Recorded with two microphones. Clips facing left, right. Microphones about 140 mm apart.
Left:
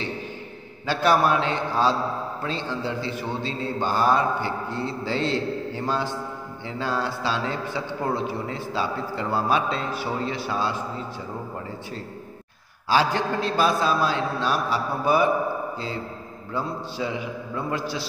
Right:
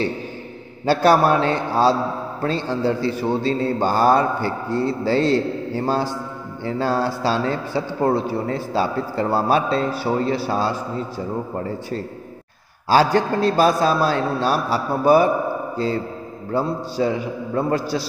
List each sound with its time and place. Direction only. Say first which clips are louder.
0.8 s speech: right 5 dB; 35° right (ahead or behind)
16.5 s speech: right 7 dB; 35° right (ahead or behind)